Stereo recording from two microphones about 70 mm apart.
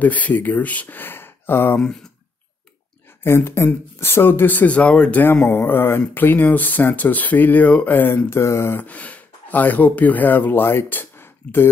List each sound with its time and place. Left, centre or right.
0.0 s speech: left
3.3 s speech: left; by 5.2 s centre
5.2 s speech: left
8.3 s speech: left
8.7 s speech: left